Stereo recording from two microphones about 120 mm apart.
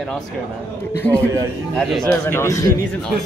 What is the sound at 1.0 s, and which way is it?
Speech, 15° left (ahead or behind).